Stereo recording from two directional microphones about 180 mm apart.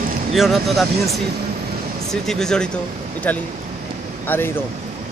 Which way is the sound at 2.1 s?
5° left (ahead or behind).